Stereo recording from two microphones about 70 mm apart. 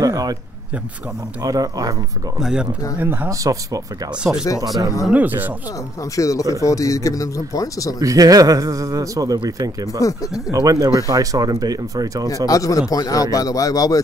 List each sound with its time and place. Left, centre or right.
0.0 s a sound: right
1.4 s speech: right
2.4 s speech: centre
3.0 s speech: right
3.3 s speech: right
4.2 s speech: centre
5.1 s speech: right
6.1 s speech: left
8.0 s speech: right
9.9 s speech: left
10.5 s speech: right
12.4 s speech: left